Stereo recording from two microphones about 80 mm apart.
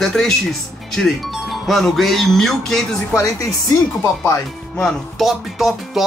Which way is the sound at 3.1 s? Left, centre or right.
Left.